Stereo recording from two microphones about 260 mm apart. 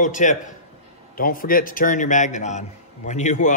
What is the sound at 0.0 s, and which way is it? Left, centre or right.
A man's voice, left.